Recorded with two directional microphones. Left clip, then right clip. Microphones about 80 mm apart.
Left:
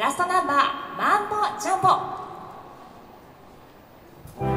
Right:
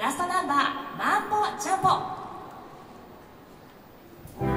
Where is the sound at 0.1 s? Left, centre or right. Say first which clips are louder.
Left 4 dB; left.